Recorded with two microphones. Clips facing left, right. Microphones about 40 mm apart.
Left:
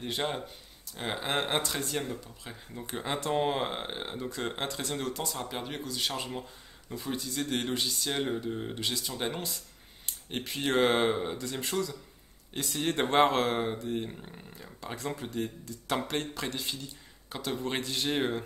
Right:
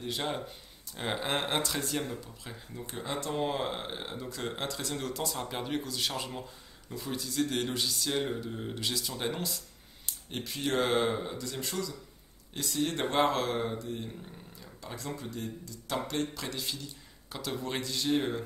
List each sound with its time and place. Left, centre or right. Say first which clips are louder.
0.0 s speech: left 2 dB; left
0.9 s speech: left 1 dB; centre
2.9 s speech: left 4 dB; left; by 9.6 s centre
10.0 s speech: left 2 dB; left
16.4 s speech: left 2 dB; centre
17.8 s speech: right 2 dB; left